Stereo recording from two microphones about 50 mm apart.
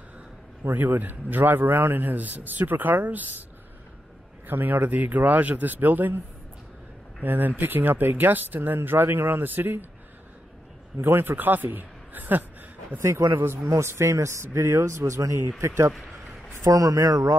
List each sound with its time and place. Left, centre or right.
0.7 s a man's voice: right
4.5 s a man's voice: right
7.2 s a man's voice: right
11.0 s a man's voice: right
13.0 s a man's voice: right
16.6 s speech: right